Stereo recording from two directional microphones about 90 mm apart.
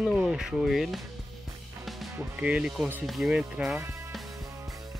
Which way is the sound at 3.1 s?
5° right (ahead or behind).